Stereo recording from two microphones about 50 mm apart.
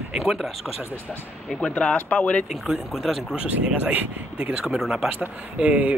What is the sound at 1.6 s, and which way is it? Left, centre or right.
Speech, left.